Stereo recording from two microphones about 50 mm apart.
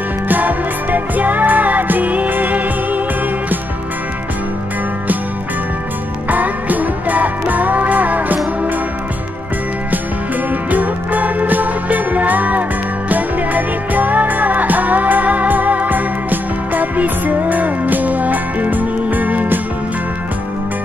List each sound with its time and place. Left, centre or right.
0.3 s music: right
6.3 s music: right
10.7 s music: right